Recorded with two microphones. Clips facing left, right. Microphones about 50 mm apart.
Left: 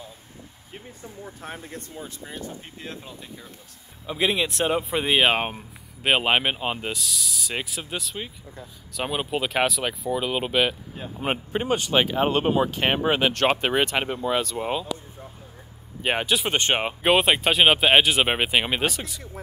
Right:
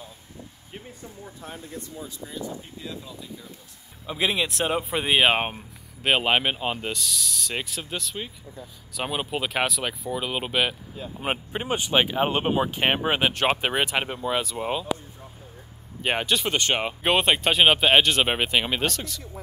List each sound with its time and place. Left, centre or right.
1.4 s speech: left
4.0 s speech: centre
11.7 s speech: centre
16.0 s speech: centre
16.4 s speech: left
17.0 s speech: centre